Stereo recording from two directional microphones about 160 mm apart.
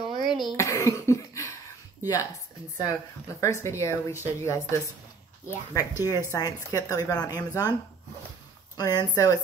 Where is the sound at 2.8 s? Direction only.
20° left (ahead or behind).